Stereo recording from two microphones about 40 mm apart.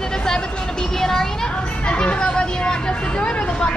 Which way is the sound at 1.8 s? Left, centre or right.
Left.